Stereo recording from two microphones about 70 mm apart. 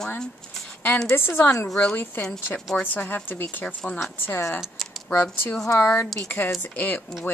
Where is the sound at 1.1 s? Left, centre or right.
Left.